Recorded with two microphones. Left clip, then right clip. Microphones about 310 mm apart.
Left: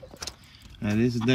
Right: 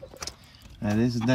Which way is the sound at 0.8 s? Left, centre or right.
Centre.